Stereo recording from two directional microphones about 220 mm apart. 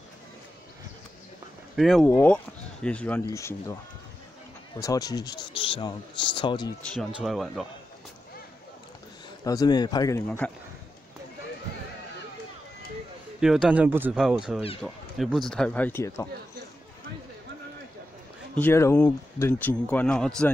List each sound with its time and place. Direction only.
1.8 s speech: centre (ahead or behind)
4.7 s speech: 15° left (ahead or behind)
6.9 s speech: centre (ahead or behind)
9.4 s speech: 15° left (ahead or behind)
13.4 s speech: 5° right (ahead or behind); by 16.3 s 15° left (ahead or behind)
18.5 s speech: 10° left (ahead or behind)